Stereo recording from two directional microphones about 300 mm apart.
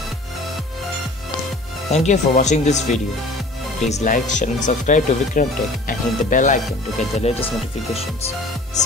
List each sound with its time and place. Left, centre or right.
1.9 s speech: left